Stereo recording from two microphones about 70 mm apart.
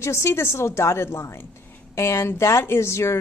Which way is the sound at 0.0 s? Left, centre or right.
Left.